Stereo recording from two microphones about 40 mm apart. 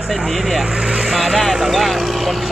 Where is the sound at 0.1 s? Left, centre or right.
Centre.